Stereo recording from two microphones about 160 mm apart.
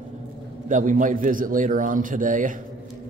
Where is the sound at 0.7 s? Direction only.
50° right (ahead or behind).